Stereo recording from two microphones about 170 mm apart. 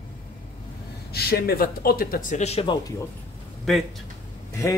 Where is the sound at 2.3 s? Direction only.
40° left (ahead or behind).